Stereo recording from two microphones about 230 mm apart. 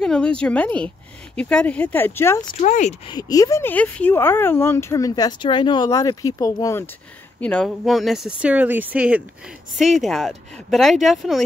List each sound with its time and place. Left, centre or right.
0.0 s a woman's voice: centre
2.6 s speech: left
3.2 s a woman's voice: centre